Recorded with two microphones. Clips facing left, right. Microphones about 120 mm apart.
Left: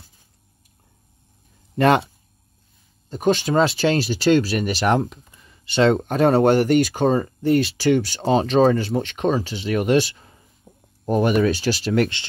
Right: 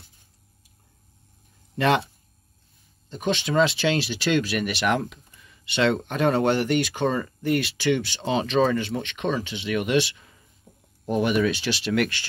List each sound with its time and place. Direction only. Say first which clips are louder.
1.8 s speech: left 5 dB; 45° left (ahead or behind)
3.1 s speech: left 6 dB; 45° left (ahead or behind)
10.7 s a sound: left 4 dB; 25° left (ahead or behind)
11.1 s speech: left 4 dB; 45° left (ahead or behind); by 12.3 s 25° left (ahead or behind)